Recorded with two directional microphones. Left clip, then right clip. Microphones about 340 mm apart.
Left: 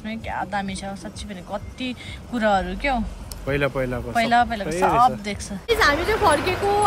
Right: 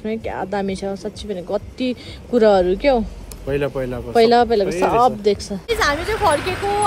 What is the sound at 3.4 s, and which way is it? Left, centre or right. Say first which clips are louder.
Speech: right 1 dB; left.